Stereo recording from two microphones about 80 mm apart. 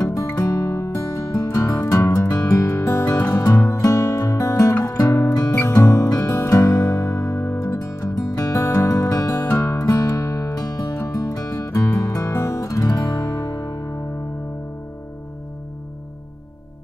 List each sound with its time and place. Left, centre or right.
0.0 s music: left
0.4 s guitar: left
1.9 s music: left
10.5 s music: left